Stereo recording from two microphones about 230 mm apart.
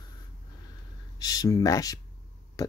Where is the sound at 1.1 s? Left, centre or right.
Centre.